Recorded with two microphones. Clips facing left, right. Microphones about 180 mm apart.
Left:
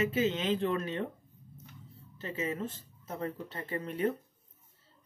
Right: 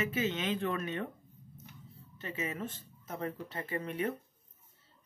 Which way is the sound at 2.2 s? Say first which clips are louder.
Left 3 dB; 30° left (ahead or behind).